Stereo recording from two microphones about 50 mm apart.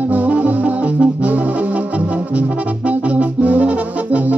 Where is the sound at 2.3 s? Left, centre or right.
Right.